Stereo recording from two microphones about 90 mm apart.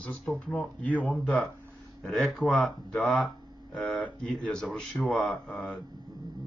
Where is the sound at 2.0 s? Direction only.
Centre (ahead or behind).